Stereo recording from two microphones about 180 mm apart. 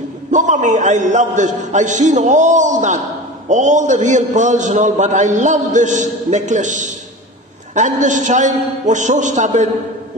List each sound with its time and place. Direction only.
0.3 s a man's voice: 45° right (ahead or behind)